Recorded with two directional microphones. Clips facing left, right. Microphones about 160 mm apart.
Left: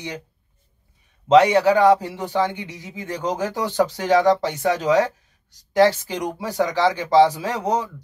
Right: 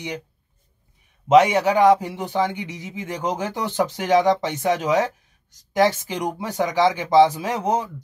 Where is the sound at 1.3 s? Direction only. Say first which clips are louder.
Left 1 dB; 15° right (ahead or behind).